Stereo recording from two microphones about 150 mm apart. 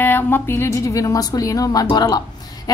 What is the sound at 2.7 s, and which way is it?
Music, 25° left (ahead or behind).